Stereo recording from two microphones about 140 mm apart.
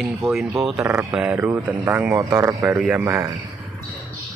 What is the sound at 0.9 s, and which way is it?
Speech, 20° right (ahead or behind).